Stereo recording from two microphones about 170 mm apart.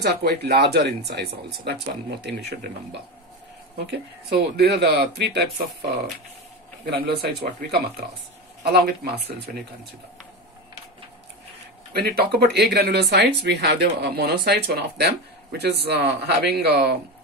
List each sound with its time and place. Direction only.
0.0 s speech: 75° right (ahead or behind)
6.9 s speech: 70° right (ahead or behind)
11.9 s speech: 70° right (ahead or behind)